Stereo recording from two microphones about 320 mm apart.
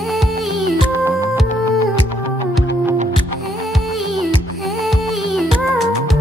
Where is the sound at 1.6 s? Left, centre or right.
Left.